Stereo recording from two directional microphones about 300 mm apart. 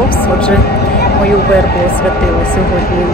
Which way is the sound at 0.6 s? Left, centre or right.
Left.